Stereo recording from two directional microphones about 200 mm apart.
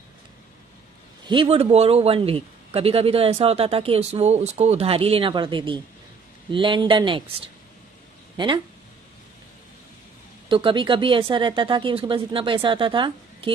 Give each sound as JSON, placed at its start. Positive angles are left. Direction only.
{"t": 1.2, "sound": "a man's voice", "side_deg": -25}
{"t": 10.5, "sound": "a man's voice", "side_deg": -25}